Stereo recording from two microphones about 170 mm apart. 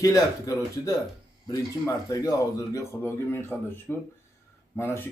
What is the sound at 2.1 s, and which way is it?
A man's voice, 20° left (ahead or behind).